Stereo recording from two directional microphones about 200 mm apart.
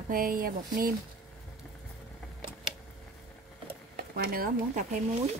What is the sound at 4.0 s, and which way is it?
Speech, 50° right (ahead or behind).